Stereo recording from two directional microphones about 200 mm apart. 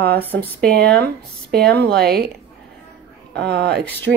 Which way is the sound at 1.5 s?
55° right (ahead or behind).